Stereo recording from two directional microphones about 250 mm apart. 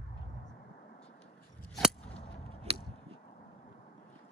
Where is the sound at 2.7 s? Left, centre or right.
Right.